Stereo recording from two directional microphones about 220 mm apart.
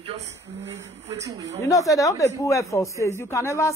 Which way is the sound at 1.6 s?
15° left (ahead or behind).